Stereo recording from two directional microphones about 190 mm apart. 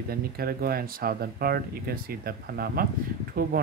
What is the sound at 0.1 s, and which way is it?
Speech, 55° right (ahead or behind).